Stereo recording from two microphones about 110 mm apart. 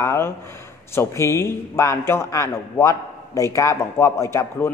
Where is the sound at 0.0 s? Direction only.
25° left (ahead or behind).